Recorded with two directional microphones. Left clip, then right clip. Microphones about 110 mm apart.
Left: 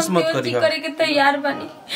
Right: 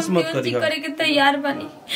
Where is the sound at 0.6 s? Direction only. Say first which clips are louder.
Left 5 dB; 5° right (ahead or behind).